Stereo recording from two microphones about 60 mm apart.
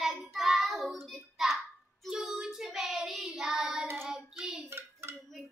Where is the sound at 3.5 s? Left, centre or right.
Centre.